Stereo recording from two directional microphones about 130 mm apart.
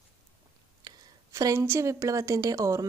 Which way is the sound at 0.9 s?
30° right (ahead or behind).